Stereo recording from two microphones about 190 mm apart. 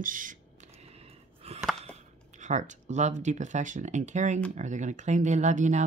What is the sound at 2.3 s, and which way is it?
Speech, 40° right (ahead or behind).